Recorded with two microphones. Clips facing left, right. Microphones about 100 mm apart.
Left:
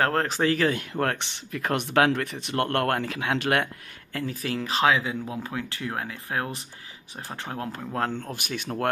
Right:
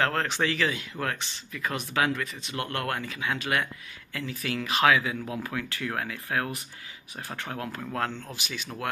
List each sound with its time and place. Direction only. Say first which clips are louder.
0.0 s speech: left 3 dB; 40° left (ahead or behind); by 3.6 s 70° left (ahead or behind)
4.1 s speech: left 3 dB; 40° left (ahead or behind)
8.1 s speech: left 5 dB; 50° left (ahead or behind)